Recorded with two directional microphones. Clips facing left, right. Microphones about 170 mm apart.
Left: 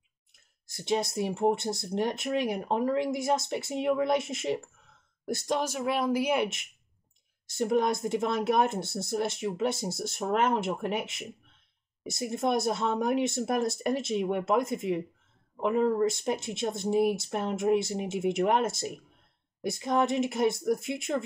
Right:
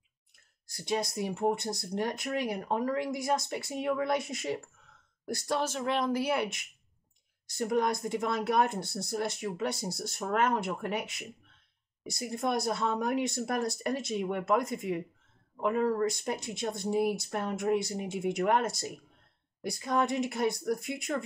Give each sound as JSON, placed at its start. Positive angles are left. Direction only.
{"t": 0.7, "sound": "speech", "side_deg": 25}